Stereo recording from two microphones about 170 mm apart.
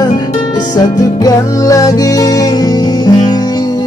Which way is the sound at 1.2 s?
20° left (ahead or behind).